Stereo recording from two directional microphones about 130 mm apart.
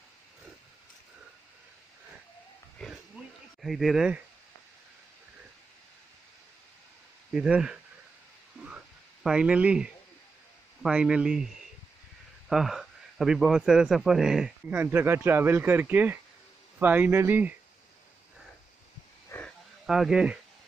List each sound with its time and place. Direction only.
2.8 s pig: 5° left (ahead or behind)
3.6 s speech: centre (ahead or behind)
7.3 s speech: 5° right (ahead or behind)
8.6 s a sound: 5° right (ahead or behind)
10.8 s a man's voice: 5° right (ahead or behind)
14.7 s speech: 15° right (ahead or behind)
19.3 s a sound: 20° left (ahead or behind)
19.9 s speech: 5° right (ahead or behind)